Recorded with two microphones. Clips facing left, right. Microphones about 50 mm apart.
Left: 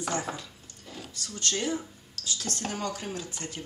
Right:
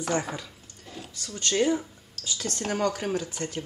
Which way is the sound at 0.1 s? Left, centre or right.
Right.